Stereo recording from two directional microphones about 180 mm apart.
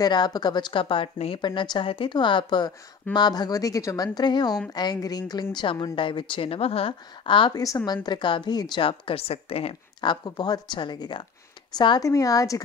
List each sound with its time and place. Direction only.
0.0 s a woman's voice: 25° left (ahead or behind)